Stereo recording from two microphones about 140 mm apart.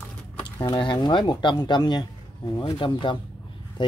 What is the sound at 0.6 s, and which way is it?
Speech, 30° left (ahead or behind).